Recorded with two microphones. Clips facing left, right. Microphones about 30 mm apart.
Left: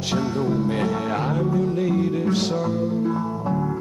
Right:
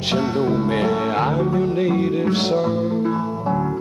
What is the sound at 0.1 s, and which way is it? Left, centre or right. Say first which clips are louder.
Music: right 3 dB; right.